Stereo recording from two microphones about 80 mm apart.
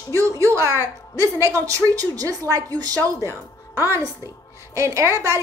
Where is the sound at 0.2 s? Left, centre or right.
Right.